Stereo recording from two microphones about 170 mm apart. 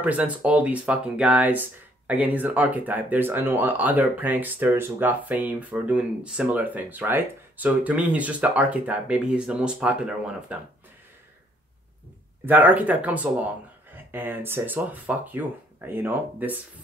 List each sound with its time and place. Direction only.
0.0 s speech: 10° right (ahead or behind)
12.4 s speech: 10° right (ahead or behind)